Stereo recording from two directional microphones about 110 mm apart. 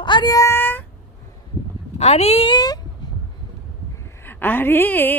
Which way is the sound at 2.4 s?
40° left (ahead or behind).